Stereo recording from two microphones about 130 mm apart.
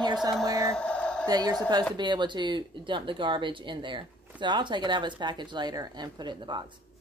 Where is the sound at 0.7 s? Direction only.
10° left (ahead or behind).